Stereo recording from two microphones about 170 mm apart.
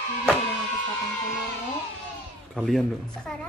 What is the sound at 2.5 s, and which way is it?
Speech, centre (ahead or behind).